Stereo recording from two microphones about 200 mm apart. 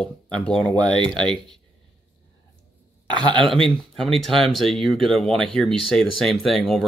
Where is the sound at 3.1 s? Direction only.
20° right (ahead or behind).